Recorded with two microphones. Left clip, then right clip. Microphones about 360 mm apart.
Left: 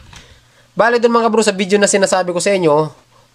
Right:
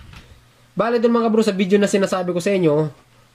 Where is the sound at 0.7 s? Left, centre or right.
Centre.